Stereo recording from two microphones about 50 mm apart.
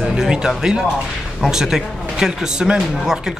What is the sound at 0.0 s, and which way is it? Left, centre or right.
Speech, centre.